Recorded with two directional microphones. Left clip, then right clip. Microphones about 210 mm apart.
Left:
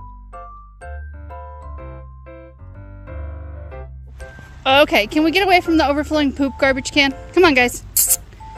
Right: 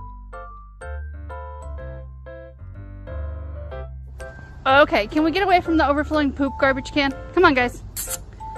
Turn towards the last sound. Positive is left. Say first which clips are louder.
# left 5 dB
turn(degrees=45)  # may be behind; listen again after turning